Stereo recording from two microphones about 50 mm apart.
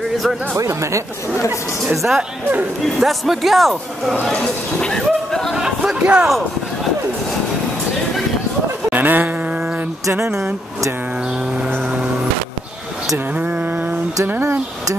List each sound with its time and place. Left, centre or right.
0.6 s speech: right
2.0 s a man's voice: centre
4.4 s speech: centre
5.5 s chatter: centre
8.9 s a sound: right
13.3 s a sound: right